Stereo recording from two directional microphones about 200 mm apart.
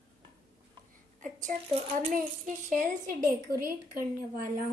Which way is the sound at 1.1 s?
40° right (ahead or behind).